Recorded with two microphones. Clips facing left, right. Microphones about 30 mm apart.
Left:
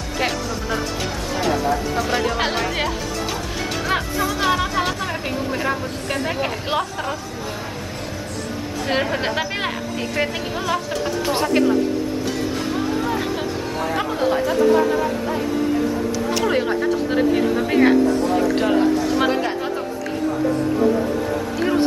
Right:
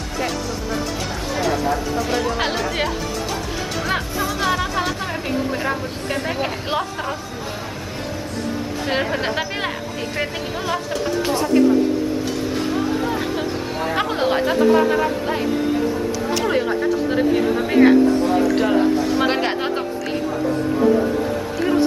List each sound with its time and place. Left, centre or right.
1.3 s speech: centre
8.8 s speech: centre
13.9 s speech: right
16.3 s speech: centre
19.2 s speech: right